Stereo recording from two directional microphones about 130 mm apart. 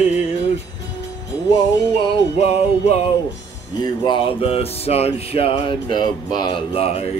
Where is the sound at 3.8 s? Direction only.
40° left (ahead or behind).